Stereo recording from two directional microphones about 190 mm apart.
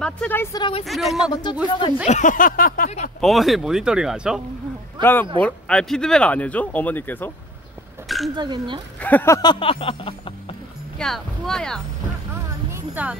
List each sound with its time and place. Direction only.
0.0 s speech: 10° left (ahead or behind); by 0.8 s 25° left (ahead or behind)
0.8 s speech: centre (ahead or behind)
1.3 s speech: 20° left (ahead or behind)
2.0 s a sound: 40° left (ahead or behind)
3.2 s speech: centre (ahead or behind)
5.0 s speech: 10° left (ahead or behind)
8.4 s speech: 25° right (ahead or behind)
9.0 s speech: 10° left (ahead or behind); by 10.3 s 30° left (ahead or behind)
11.0 s speech: centre (ahead or behind)
12.7 s speech: 10° right (ahead or behind)